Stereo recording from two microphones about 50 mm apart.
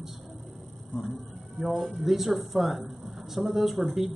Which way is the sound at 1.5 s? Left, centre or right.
Centre.